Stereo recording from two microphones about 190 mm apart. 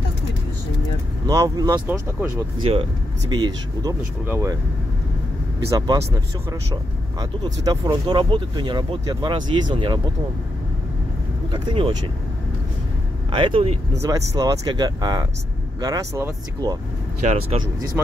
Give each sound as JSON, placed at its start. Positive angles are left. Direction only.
{"t": 1.2, "sound": "speech", "side_deg": -20}
{"t": 5.7, "sound": "speech", "side_deg": -20}
{"t": 11.5, "sound": "speech", "side_deg": -25}
{"t": 13.3, "sound": "speech", "side_deg": -25}
{"t": 14.0, "sound": "speech", "side_deg": -20}
{"t": 17.2, "sound": "speech", "side_deg": -35}